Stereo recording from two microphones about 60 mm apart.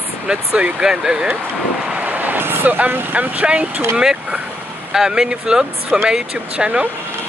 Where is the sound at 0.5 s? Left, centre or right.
Centre.